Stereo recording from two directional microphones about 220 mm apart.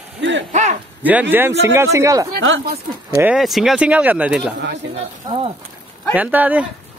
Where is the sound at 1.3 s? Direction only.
10° right (ahead or behind).